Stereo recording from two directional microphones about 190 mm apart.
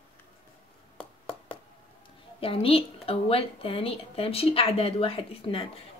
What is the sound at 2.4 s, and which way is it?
A woman's voice, 30° left (ahead or behind).